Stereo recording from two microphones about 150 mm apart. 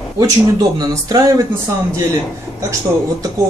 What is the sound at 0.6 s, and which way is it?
Speech, 25° right (ahead or behind).